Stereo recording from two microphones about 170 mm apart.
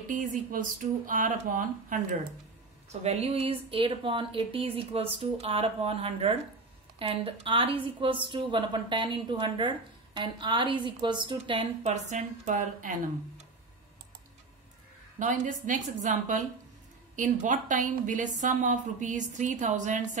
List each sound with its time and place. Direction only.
0.1 s a woman's voice: 50° right (ahead or behind)
2.9 s a woman's voice: 40° right (ahead or behind)
11.9 s a woman's voice: 45° right (ahead or behind)
15.1 s a woman's voice: 45° right (ahead or behind)